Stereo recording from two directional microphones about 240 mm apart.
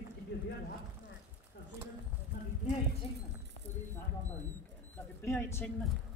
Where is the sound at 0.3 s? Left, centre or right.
Left.